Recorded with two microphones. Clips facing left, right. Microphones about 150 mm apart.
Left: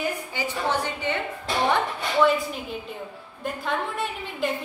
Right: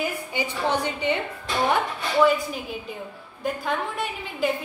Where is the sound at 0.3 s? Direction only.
15° right (ahead or behind).